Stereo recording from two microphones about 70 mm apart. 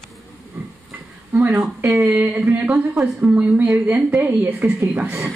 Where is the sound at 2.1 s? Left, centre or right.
Right.